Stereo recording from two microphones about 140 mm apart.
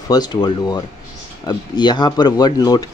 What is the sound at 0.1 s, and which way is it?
Speech, 30° left (ahead or behind).